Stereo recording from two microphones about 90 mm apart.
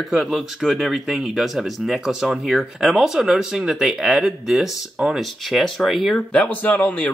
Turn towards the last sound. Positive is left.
turn(degrees=15)  # may be behind; listen again after turning